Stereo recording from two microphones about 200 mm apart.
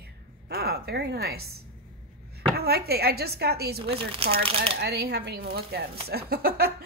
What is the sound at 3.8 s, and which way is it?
Speech, 25° right (ahead or behind).